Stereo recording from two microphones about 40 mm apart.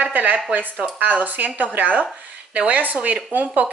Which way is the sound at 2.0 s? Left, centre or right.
Right.